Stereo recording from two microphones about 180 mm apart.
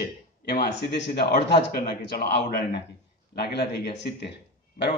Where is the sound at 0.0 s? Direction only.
60° left (ahead or behind).